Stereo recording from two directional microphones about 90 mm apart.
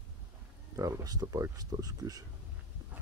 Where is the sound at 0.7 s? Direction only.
40° right (ahead or behind).